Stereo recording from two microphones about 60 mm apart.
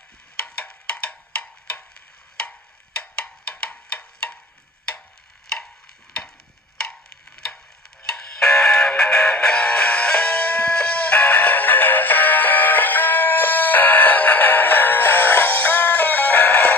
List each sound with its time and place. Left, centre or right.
0.4 s music: centre
3.0 s music: centre
6.8 s music: centre; by 16.7 s left